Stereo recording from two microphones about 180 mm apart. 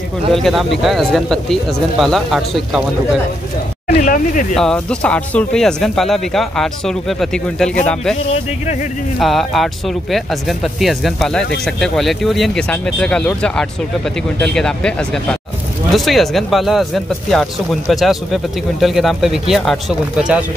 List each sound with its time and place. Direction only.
0.3 s speech: centre (ahead or behind)
3.8 s speech: 45° left (ahead or behind)
4.6 s speech: 5° left (ahead or behind)
9.2 s speech: centre (ahead or behind)